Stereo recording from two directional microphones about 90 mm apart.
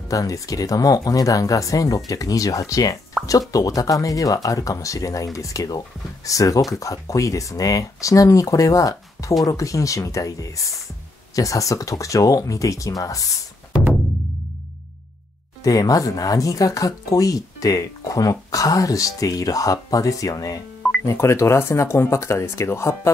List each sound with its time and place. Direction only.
0.1 s speech: 40° left (ahead or behind)
15.6 s speech: 40° left (ahead or behind)